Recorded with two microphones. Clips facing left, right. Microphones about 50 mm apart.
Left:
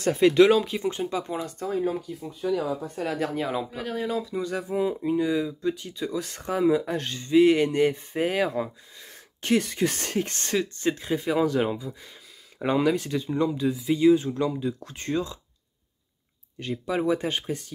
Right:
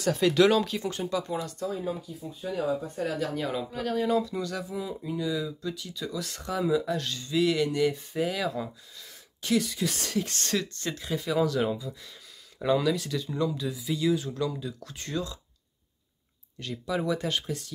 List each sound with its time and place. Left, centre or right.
0.1 s speech: left
1.9 s speech: left
3.4 s speech: centre
3.8 s speech: centre
4.4 s speech: left
4.6 s speech: left
16.5 s speech: left